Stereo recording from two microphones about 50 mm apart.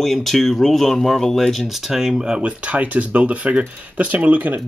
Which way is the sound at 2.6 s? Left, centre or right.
Right.